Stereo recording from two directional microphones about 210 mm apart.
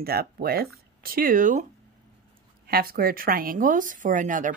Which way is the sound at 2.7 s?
45° right (ahead or behind).